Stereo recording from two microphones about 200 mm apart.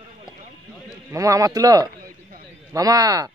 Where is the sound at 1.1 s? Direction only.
15° right (ahead or behind).